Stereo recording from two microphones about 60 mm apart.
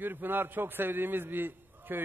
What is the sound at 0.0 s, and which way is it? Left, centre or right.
A man's voice, right.